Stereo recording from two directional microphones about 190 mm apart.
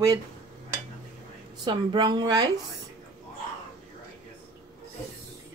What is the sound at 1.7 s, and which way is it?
Speech, 25° right (ahead or behind).